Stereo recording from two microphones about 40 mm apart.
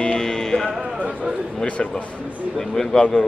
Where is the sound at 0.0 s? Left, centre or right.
Left.